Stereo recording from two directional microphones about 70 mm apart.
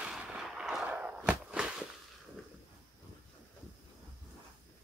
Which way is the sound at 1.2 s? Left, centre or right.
Centre.